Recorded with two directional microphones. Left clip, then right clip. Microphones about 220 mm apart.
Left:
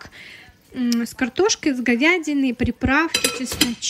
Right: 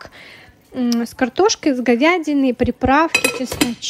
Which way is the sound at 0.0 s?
25° right (ahead or behind).